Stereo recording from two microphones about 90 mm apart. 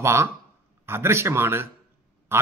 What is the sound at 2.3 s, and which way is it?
Quack, 30° right (ahead or behind).